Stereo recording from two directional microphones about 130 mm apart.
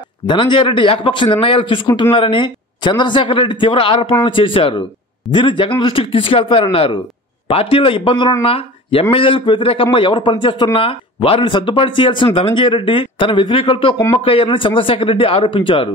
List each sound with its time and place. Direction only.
0.3 s speech: 40° left (ahead or behind)